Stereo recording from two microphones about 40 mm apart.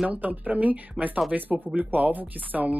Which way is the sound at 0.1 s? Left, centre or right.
Right.